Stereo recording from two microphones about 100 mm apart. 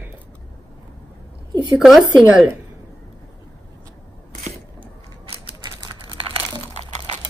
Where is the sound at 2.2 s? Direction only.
15° right (ahead or behind).